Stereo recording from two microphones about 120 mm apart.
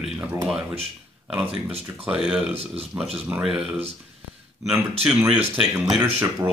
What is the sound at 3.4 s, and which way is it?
Speech, 10° right (ahead or behind).